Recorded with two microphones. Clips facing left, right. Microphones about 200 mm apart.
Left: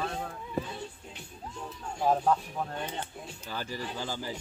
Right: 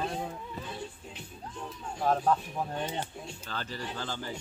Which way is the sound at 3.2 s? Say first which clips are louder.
Left 1 dB; 10° left (ahead or behind).